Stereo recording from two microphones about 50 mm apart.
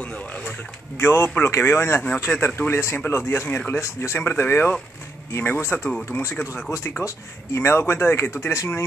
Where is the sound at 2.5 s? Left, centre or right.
Left.